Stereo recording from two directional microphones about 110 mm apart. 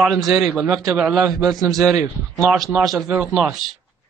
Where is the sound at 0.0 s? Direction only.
Centre (ahead or behind).